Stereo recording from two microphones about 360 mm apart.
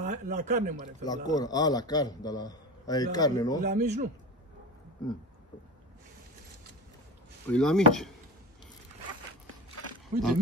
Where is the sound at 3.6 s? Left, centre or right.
Centre.